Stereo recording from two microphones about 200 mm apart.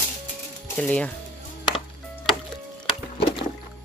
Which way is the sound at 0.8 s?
5° left (ahead or behind).